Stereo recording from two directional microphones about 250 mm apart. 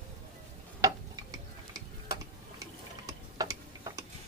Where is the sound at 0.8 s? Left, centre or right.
Centre.